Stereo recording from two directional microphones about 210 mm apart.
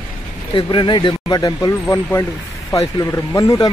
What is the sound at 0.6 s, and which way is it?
Speech, 20° left (ahead or behind).